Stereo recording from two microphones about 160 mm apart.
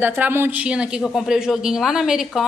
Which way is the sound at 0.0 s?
15° right (ahead or behind).